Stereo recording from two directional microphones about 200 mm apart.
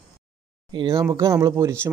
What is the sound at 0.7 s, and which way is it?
Speech, 20° right (ahead or behind).